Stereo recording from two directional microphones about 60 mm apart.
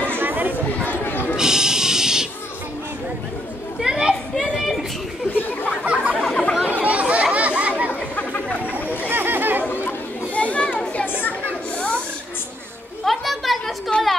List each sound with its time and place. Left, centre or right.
0.1 s chatter: right
0.8 s a sound: left
1.3 s a sound: centre
3.8 s children playing: centre
5.7 s chatter: centre
6.2 s chatter: centre
6.7 s chatter: right
7.3 s children playing: right
7.9 s chatter: left
9.0 s chatter: right
9.7 s chatter: left
11.1 s a sound: left
13.0 s a sound: centre